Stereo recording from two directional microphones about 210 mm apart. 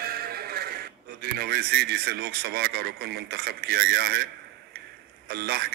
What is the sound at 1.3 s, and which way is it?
A man's voice, 50° right (ahead or behind).